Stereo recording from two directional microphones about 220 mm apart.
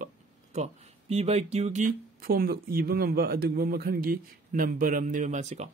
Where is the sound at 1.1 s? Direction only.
30° right (ahead or behind).